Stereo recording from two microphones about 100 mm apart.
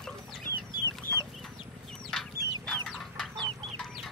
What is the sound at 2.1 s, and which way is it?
Chicken, 5° left (ahead or behind).